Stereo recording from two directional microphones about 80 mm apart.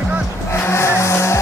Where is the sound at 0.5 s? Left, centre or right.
Left.